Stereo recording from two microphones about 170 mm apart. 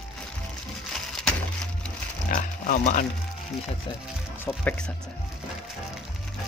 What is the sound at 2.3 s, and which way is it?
Speech, 45° left (ahead or behind).